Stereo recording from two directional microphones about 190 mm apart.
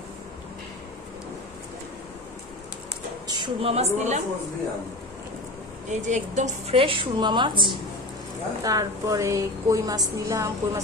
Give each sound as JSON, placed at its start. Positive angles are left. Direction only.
{"t": 3.3, "sound": "a woman's voice", "side_deg": -25}
{"t": 5.9, "sound": "a woman's voice", "side_deg": -40}